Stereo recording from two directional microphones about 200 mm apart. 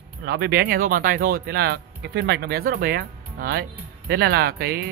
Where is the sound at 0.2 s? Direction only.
55° right (ahead or behind).